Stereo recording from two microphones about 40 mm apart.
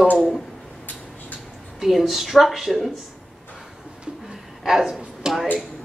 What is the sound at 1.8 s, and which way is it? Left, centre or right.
A woman's voice, centre.